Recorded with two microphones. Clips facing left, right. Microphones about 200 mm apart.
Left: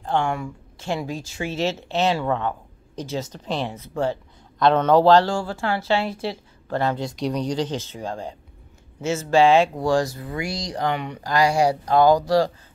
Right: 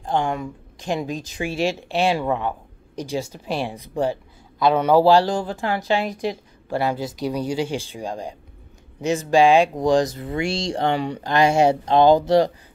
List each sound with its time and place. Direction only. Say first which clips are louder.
0.0 s speech: right 1 dB; 15° right (ahead or behind)